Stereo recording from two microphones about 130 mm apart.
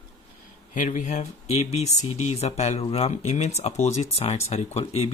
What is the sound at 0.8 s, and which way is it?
Speech, 75° left (ahead or behind).